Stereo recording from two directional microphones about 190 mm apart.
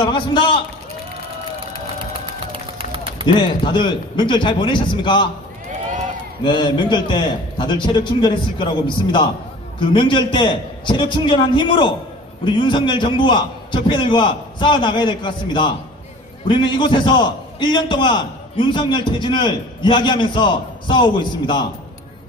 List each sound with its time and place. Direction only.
0.0 s a man's voice: 25° left (ahead or behind)
2.2 s run: 30° right (ahead or behind)
3.3 s a man's voice: 25° left (ahead or behind)
6.4 s a man's voice: 25° left (ahead or behind)